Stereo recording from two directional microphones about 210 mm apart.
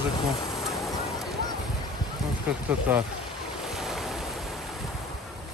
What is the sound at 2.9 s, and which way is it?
Speech, 10° right (ahead or behind).